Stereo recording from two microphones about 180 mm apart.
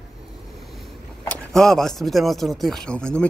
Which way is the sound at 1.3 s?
Centre (ahead or behind).